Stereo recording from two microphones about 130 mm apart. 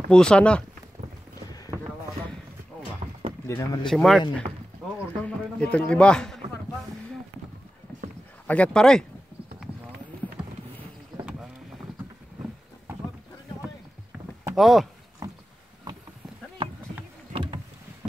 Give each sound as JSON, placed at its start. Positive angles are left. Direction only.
{"t": 0.1, "sound": "speech", "side_deg": 5}
{"t": 3.4, "sound": "speech", "side_deg": 25}
{"t": 3.8, "sound": "speech", "side_deg": 5}
{"t": 5.2, "sound": "a sound", "side_deg": 10}
{"t": 8.5, "sound": "speech", "side_deg": 10}
{"t": 14.5, "sound": "speech", "side_deg": 0}
{"t": 17.3, "sound": "boat", "side_deg": -40}